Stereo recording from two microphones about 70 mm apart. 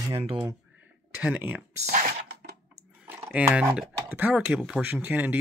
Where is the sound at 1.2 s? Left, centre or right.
Right.